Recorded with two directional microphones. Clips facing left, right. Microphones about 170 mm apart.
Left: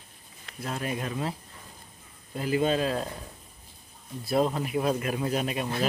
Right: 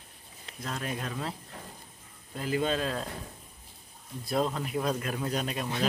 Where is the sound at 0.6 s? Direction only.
5° left (ahead or behind).